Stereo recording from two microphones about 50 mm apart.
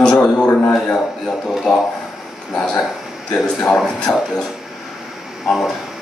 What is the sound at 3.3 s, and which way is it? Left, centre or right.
Speech, centre.